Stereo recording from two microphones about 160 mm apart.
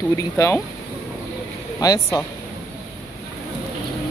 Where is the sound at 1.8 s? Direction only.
20° left (ahead or behind).